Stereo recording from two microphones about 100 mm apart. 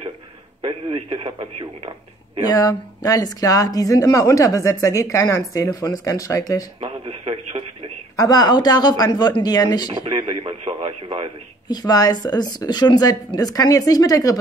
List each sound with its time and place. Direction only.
0.6 s a man's voice: 70° right (ahead or behind)
2.4 s a woman's voice: 40° left (ahead or behind)
6.8 s radio: 75° right (ahead or behind)
8.2 s a woman's voice: 40° left (ahead or behind)
10.0 s radio: 55° right (ahead or behind); by 11.2 s 75° right (ahead or behind)
11.6 s a woman's voice: 40° left (ahead or behind)